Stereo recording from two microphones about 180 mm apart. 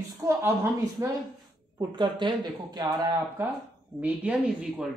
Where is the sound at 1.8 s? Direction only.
25° right (ahead or behind).